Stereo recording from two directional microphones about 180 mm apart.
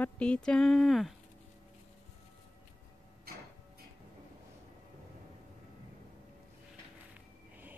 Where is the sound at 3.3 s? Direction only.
60° right (ahead or behind).